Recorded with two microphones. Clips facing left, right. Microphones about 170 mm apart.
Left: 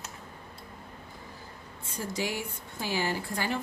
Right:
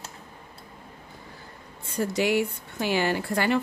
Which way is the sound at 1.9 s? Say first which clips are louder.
Right 9 dB; 65° right (ahead or behind).